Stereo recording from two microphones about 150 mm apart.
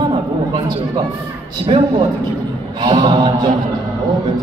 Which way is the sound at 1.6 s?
40° right (ahead or behind).